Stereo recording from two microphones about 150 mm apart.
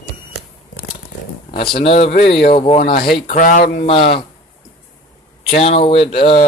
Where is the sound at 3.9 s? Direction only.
40° left (ahead or behind).